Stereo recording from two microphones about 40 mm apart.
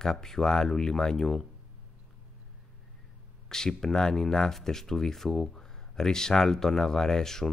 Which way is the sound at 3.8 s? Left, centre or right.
Centre.